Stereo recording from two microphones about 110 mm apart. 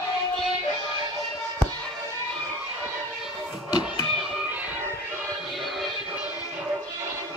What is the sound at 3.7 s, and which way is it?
Music, 40° left (ahead or behind).